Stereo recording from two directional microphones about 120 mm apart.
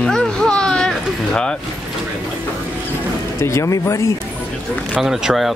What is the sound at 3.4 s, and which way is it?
Speech, 25° left (ahead or behind).